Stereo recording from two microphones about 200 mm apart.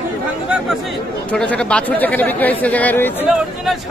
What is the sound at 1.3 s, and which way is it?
Speech, 5° left (ahead or behind).